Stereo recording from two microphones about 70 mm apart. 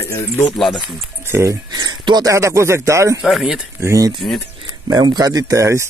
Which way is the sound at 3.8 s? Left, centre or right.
Right.